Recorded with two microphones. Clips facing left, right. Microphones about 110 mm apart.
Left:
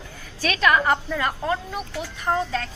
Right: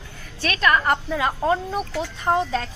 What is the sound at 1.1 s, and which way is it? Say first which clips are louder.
Speech: right 3 dB; 20° right (ahead or behind).